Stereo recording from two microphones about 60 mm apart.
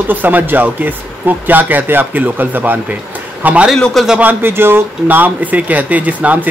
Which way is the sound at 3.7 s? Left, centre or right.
Centre.